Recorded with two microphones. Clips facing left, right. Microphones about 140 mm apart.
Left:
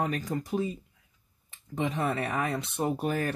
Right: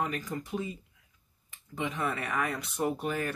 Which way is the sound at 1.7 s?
35° left (ahead or behind).